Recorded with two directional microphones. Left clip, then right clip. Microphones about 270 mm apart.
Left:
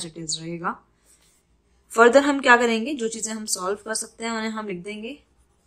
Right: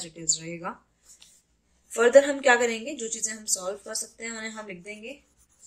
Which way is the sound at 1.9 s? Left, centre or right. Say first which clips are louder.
Left 3 dB; left.